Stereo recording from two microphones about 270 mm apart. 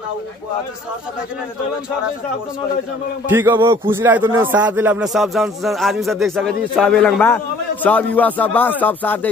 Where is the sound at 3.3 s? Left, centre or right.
Centre.